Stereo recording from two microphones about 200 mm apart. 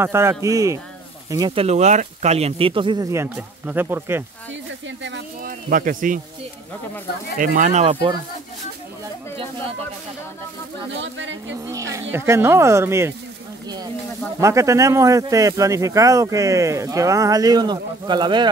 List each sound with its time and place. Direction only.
0.0 s speech: 10° right (ahead or behind)
4.8 s speech: 65° right (ahead or behind)
5.4 s a man's voice: 45° right (ahead or behind)
7.3 s speech: 40° right (ahead or behind); by 8.2 s 25° right (ahead or behind)
10.9 s speech: 70° right (ahead or behind)
11.9 s speech: 15° right (ahead or behind)
14.4 s speech: 15° right (ahead or behind)